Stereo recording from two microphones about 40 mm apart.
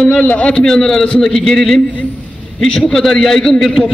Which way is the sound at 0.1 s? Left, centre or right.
Left.